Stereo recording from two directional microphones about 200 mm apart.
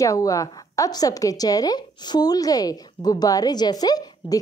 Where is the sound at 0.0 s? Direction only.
15° left (ahead or behind).